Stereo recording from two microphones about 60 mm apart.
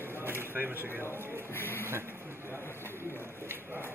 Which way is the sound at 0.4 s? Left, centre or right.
Right.